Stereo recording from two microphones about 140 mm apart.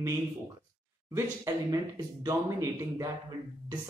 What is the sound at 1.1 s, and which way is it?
Speech, 25° right (ahead or behind).